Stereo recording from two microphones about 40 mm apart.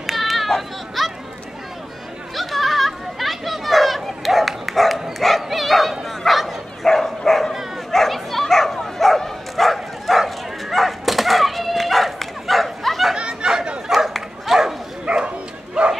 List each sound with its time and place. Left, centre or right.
0.0 s a sound: centre
0.5 s baby cry: centre
2.3 s children playing: centre
5.2 s bow-wow: centre
13.1 s chatter: right
13.9 s dog: centre
15.0 s bow-wow: right